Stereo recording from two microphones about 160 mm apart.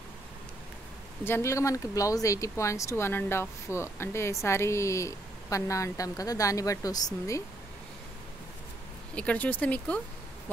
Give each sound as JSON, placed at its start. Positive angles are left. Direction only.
{"t": 1.2, "sound": "speech", "side_deg": 15}
{"t": 9.1, "sound": "speech", "side_deg": 10}